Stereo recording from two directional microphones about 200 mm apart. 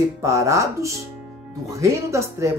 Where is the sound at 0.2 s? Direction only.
15° right (ahead or behind).